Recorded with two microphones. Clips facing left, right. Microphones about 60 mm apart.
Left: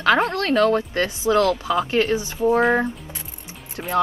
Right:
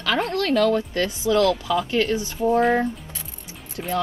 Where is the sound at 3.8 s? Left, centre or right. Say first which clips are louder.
Even; left.